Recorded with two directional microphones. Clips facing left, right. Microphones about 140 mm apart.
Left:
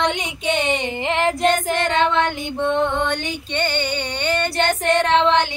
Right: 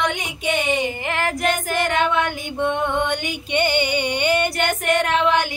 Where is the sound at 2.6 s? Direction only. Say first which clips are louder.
Left 1 dB; 10° right (ahead or behind).